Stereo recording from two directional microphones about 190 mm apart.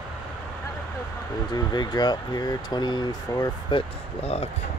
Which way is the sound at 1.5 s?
20° left (ahead or behind).